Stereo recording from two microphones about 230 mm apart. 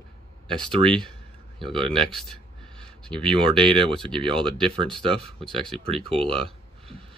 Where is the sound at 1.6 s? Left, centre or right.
Centre.